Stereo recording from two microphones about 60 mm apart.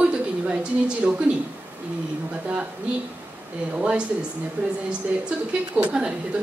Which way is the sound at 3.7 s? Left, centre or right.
Centre.